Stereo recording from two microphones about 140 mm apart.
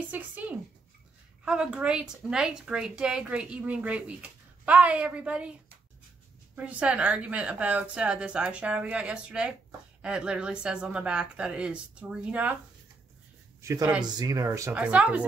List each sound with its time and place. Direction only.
0.1 s a woman's voice: 10° right (ahead or behind)
13.6 s speech: 20° right (ahead or behind)
14.8 s a woman's voice: 10° right (ahead or behind)